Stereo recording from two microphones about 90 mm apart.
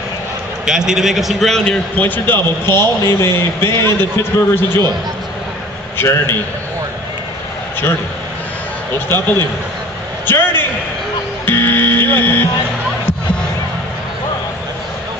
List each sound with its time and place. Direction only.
0.7 s a man's voice: 5° right (ahead or behind)
2.0 s a man's voice: 20° left (ahead or behind)
6.0 s a man's voice: 25° left (ahead or behind)
10.2 s a sound: 25° left (ahead or behind)
11.4 s music: 25° left (ahead or behind)